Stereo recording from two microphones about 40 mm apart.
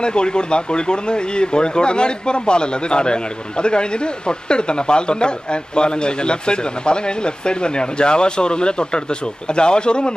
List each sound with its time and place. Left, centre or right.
0.0 s speech: left